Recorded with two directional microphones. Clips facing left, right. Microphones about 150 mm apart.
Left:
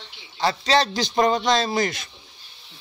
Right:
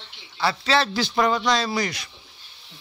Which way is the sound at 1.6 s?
45° left (ahead or behind).